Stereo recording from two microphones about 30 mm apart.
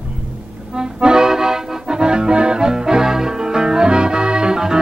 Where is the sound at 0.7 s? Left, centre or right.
Right.